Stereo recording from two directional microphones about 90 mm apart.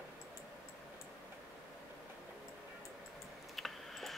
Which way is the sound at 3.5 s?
Centre (ahead or behind).